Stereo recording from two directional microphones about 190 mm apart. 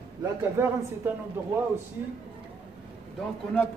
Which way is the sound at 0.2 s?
15° right (ahead or behind).